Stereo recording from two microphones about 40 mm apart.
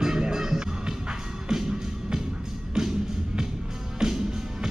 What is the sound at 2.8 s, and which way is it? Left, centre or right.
Music, centre.